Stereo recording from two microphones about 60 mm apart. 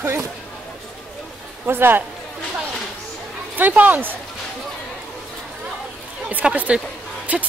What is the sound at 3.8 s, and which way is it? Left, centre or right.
Speech, right.